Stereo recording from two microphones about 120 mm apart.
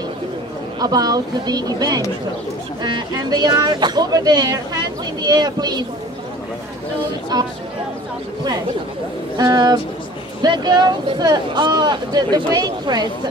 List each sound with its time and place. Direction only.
0.7 s speech: 35° right (ahead or behind)
7.3 s speech: 35° right (ahead or behind)
9.4 s speech: 35° right (ahead or behind)